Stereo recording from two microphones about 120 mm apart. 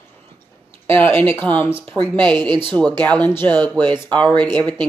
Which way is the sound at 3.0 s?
10° left (ahead or behind).